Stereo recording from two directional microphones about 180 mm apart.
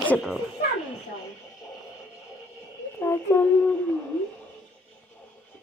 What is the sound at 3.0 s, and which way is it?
Music, 15° left (ahead or behind).